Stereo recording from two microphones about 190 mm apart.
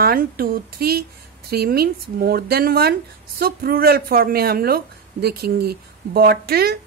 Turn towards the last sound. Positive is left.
turn(degrees=-55)  # may be behind; listen again after turning